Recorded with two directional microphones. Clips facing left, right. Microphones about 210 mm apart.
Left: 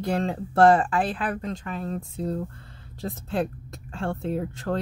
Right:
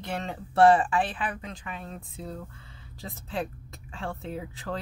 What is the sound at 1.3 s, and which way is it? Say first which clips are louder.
Speech: left 8 dB; 40° left (ahead or behind).